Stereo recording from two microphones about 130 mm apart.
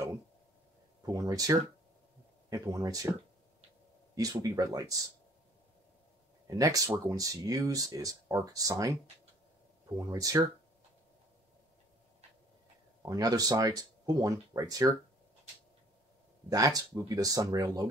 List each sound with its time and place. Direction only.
1.0 s speech: 25° right (ahead or behind)
4.1 s speech: 30° right (ahead or behind)
6.4 s speech: 25° right (ahead or behind)
9.9 s speech: 25° right (ahead or behind)
13.0 s speech: 30° right (ahead or behind)
16.4 s speech: 25° right (ahead or behind)